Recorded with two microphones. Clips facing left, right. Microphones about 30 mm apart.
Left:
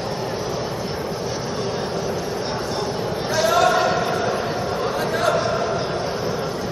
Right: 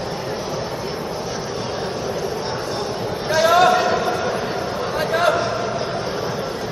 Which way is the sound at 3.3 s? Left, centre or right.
Centre.